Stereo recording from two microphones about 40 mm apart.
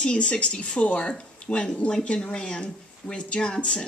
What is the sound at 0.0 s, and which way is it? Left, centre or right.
Speech, left.